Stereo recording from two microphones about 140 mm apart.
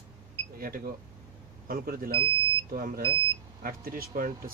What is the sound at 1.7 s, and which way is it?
Speech, 90° right.